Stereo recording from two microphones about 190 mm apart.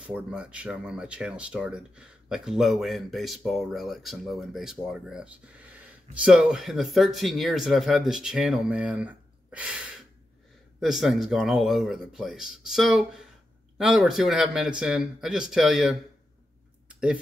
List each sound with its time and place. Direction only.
0.0 s speech: 5° right (ahead or behind)